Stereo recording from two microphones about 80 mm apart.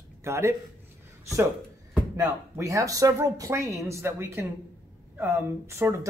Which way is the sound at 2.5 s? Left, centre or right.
Right.